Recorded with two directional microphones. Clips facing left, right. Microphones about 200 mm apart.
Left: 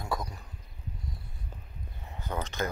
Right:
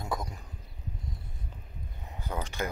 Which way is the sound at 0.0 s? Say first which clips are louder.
Even; 25° right (ahead or behind).